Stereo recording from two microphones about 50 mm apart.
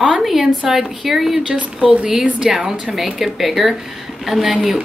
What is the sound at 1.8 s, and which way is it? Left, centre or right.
A woman's voice, centre.